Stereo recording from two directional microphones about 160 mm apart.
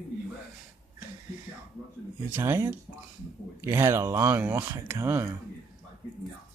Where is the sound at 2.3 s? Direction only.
15° right (ahead or behind).